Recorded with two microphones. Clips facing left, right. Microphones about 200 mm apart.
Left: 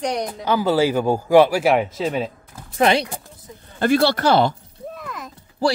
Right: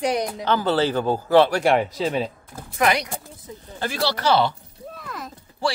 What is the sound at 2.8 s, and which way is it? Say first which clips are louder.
Speech: left 4 dB; 30° left (ahead or behind).